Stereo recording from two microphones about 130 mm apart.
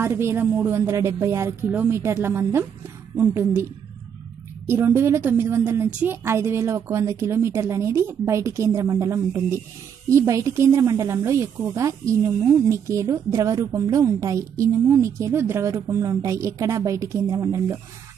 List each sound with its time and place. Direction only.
0.0 s a woman's voice: 20° right (ahead or behind)
4.6 s a woman's voice: 20° right (ahead or behind)